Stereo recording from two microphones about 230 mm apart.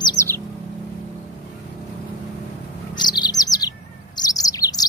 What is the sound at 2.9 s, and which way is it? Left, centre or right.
Chirp, centre.